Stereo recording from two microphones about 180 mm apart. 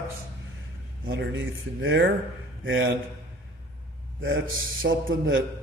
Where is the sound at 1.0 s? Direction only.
75° right (ahead or behind).